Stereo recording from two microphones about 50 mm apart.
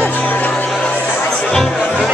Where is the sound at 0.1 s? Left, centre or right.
Left.